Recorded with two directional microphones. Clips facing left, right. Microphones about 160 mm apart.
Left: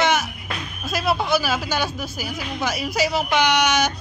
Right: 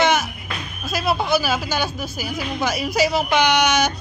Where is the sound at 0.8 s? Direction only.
5° right (ahead or behind).